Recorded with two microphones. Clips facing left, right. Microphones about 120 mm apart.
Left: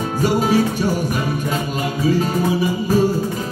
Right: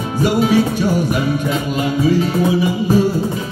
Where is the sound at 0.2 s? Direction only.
40° left (ahead or behind).